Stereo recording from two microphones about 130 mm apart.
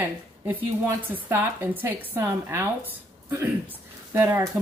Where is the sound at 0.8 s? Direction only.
15° right (ahead or behind).